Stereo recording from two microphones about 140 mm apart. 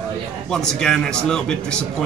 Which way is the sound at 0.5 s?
5° left (ahead or behind).